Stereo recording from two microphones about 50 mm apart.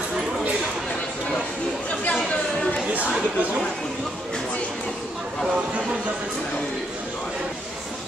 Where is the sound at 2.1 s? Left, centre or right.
Centre.